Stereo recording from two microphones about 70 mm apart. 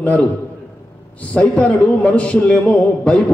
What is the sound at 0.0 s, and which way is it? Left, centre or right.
A man's voice, centre.